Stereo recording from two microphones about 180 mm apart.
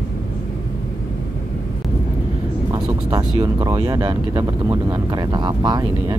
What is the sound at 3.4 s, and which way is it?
Speech, 20° right (ahead or behind).